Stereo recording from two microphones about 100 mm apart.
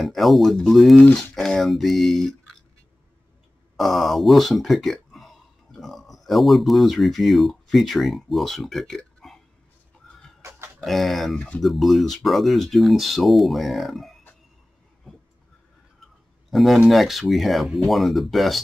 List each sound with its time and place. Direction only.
0.0 s speech: centre (ahead or behind)
3.7 s speech: centre (ahead or behind)
10.4 s chicken: 30° right (ahead or behind)
10.8 s speech: centre (ahead or behind)
11.3 s speech: 15° left (ahead or behind)
11.6 s speech: centre (ahead or behind)
16.4 s speech: centre (ahead or behind)